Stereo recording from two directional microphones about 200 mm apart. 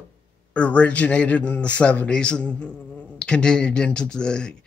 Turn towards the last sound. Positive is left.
turn(degrees=5)  # may be behind; listen again after turning